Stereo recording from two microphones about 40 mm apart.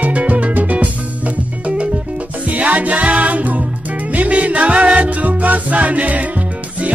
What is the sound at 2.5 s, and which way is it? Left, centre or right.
Music, right.